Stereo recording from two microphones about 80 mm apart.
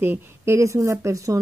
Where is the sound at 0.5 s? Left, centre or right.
Right.